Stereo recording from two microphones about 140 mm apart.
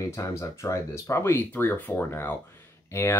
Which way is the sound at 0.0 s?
20° left (ahead or behind).